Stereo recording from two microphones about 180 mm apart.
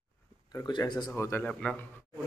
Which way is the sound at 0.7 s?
25° left (ahead or behind).